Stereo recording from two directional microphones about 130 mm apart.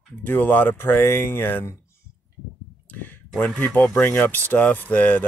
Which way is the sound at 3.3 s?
10° left (ahead or behind).